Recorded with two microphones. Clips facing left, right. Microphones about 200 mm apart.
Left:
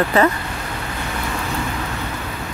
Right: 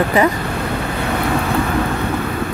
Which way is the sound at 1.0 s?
60° right (ahead or behind).